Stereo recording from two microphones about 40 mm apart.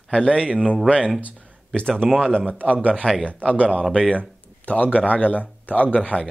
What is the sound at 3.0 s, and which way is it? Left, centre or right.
Speech, left.